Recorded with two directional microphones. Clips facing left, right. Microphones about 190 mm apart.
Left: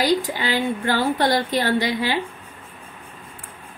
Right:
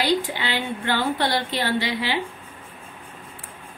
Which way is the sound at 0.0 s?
40° left (ahead or behind).